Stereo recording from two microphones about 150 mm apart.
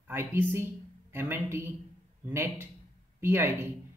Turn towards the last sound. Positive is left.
turn(degrees=-15)  # may be behind; listen again after turning